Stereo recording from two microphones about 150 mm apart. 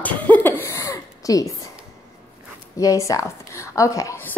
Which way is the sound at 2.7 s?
20° left (ahead or behind).